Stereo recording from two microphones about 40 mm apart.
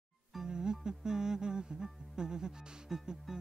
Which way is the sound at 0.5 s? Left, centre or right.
Centre.